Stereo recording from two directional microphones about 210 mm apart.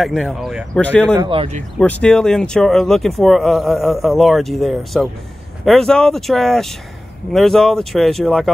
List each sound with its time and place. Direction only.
0.0 s speech: centre (ahead or behind)
1.1 s speech: 20° right (ahead or behind)
1.8 s speech: 5° left (ahead or behind)